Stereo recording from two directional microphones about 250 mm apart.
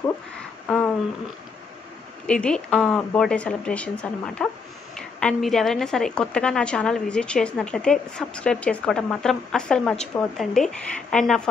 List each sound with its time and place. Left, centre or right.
2.2 s a woman's voice: centre